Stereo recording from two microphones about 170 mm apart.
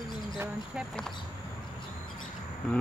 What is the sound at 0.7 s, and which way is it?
Speech, centre (ahead or behind).